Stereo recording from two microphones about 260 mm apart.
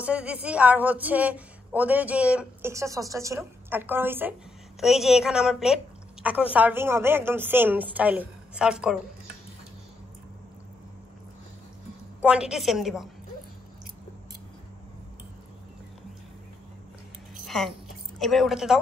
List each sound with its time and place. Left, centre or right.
0.0 s a woman's voice: centre
12.2 s a woman's voice: centre
17.5 s a woman's voice: centre